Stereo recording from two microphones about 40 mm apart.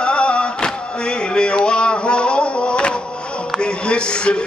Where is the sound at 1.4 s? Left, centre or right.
Left.